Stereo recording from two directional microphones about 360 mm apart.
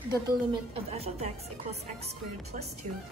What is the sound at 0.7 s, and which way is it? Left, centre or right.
A woman's voice, centre.